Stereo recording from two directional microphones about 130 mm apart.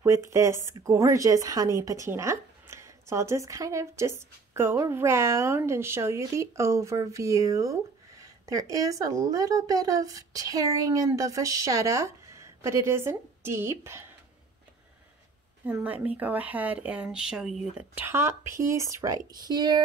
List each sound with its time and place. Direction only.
0.0 s speech: 20° right (ahead or behind)
15.8 s speech: 10° right (ahead or behind); by 19.8 s 30° right (ahead or behind)